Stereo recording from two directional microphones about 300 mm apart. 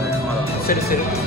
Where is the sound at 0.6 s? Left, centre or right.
Left.